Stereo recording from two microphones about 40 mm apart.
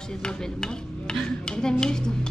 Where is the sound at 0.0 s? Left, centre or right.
Centre.